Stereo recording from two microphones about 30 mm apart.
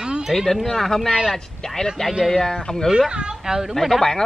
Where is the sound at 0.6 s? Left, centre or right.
Centre.